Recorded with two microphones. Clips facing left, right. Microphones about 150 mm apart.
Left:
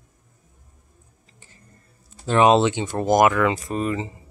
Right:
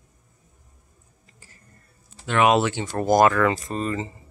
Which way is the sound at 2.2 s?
30° left (ahead or behind).